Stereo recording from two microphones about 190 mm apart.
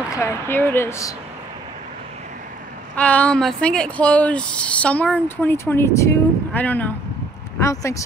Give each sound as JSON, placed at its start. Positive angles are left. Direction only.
{"t": 0.1, "sound": "speech", "side_deg": 15}
{"t": 3.0, "sound": "speech", "side_deg": 5}